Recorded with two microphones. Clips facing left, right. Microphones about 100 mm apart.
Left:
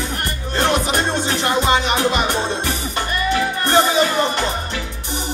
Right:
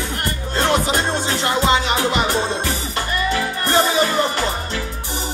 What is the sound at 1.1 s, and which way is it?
Music, 20° left (ahead or behind).